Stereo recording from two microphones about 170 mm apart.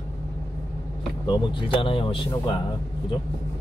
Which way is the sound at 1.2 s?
30° left (ahead or behind).